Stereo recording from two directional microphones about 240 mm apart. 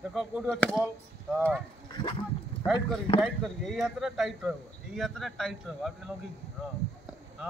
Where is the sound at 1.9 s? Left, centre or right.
Left.